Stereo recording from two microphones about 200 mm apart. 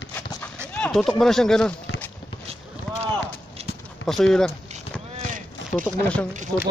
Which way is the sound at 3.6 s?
30° right (ahead or behind).